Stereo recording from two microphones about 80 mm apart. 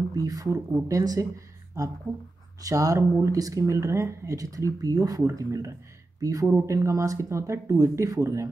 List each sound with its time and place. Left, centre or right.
0.1 s speech: right